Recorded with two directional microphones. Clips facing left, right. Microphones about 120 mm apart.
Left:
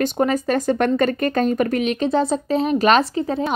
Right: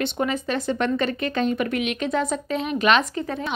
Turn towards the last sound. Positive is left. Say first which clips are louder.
# left 6 dB
turn(degrees=30)  # may be behind; listen again after turning